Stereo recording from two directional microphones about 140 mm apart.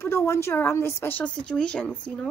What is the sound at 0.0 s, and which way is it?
A woman's voice, 15° left (ahead or behind).